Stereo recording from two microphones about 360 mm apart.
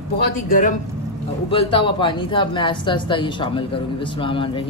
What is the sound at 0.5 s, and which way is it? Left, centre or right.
A man's voice, left.